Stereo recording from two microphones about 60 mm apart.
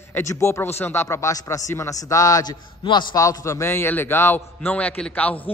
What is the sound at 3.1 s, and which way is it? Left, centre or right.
Speech, left.